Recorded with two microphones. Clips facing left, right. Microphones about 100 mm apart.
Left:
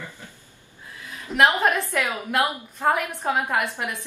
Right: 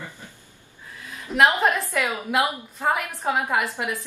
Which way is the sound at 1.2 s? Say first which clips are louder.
Even; centre (ahead or behind).